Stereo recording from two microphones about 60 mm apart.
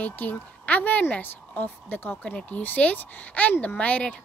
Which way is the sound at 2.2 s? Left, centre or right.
Left.